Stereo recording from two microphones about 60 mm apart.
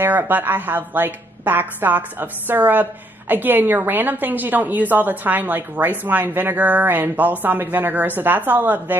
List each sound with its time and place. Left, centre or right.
0.0 s a woman's voice: right